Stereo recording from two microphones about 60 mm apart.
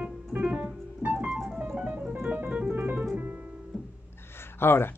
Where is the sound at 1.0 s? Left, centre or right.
Right.